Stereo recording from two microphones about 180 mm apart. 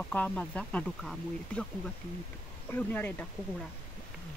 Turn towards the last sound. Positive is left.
turn(degrees=10)  # may be behind; listen again after turning